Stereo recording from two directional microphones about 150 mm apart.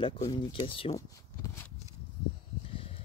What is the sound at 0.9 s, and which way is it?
Speech, 20° left (ahead or behind).